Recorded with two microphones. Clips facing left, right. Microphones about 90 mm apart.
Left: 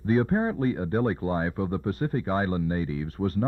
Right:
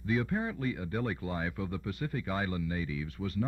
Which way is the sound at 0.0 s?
40° left (ahead or behind).